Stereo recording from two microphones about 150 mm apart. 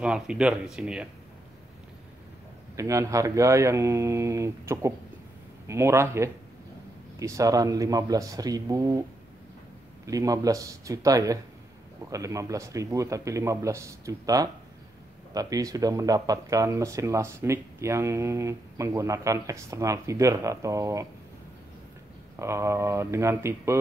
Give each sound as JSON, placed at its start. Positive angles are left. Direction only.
{"t": 0.0, "sound": "speech", "side_deg": -5}
{"t": 2.7, "sound": "speech", "side_deg": -20}
{"t": 10.0, "sound": "speech", "side_deg": -20}
{"t": 22.4, "sound": "speech", "side_deg": -20}